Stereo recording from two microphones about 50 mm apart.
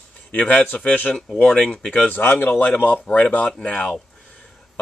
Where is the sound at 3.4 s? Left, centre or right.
Centre.